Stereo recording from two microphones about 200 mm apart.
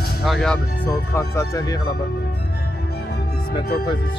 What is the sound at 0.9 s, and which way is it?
Speech, 15° left (ahead or behind).